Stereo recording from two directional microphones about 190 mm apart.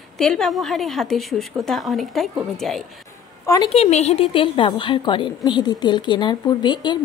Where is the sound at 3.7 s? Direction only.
35° left (ahead or behind).